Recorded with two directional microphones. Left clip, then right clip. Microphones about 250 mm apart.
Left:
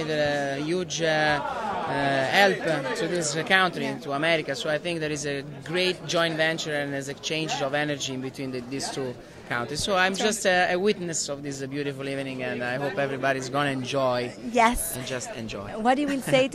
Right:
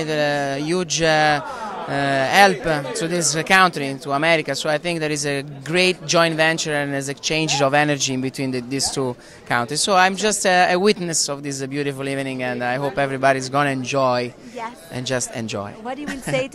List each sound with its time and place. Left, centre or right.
0.0 s speech: right
14.6 s a woman's voice: left
15.8 s a woman's voice: centre
16.3 s speech: right